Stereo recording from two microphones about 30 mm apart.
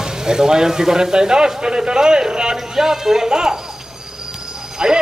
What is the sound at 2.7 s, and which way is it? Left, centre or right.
Speech, centre.